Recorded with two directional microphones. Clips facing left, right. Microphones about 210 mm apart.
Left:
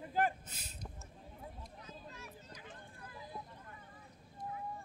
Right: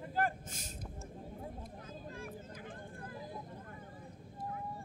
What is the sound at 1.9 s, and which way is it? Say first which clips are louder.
Vehicle: right 7 dB; 50° right (ahead or behind).